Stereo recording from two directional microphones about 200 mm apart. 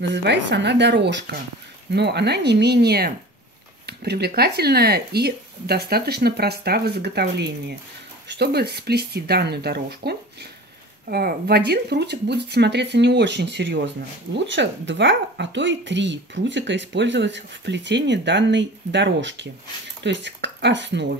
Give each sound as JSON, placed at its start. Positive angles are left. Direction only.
{"t": 0.0, "sound": "speech", "side_deg": -60}